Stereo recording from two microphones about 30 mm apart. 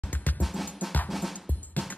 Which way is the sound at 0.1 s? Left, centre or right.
Left.